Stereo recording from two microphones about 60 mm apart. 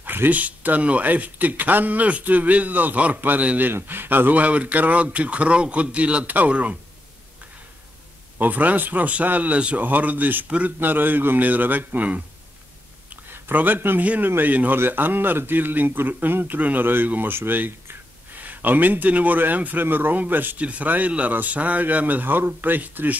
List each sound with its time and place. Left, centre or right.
0.0 s speech: right
8.4 s speech: right
13.1 s a sound: right
14.0 s speech: right